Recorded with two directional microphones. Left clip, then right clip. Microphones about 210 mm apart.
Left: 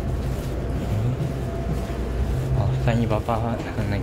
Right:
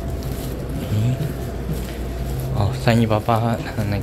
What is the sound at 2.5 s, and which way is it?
Speech, 25° right (ahead or behind).